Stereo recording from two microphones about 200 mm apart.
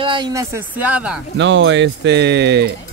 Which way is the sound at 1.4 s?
65° right (ahead or behind).